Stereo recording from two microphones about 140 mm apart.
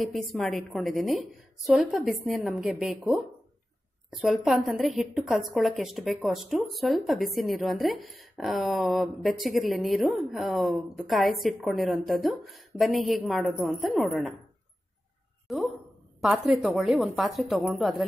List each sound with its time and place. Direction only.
0.0 s a woman's voice: centre (ahead or behind)
4.1 s a woman's voice: centre (ahead or behind)
15.4 s a sound: centre (ahead or behind)
16.2 s a woman's voice: centre (ahead or behind)